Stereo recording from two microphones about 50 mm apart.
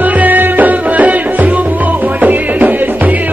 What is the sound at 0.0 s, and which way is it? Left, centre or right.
Music, right.